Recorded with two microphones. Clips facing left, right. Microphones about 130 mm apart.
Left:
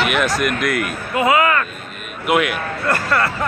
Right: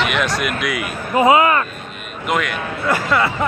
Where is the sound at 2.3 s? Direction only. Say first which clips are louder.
Left 3 dB; 5° left (ahead or behind).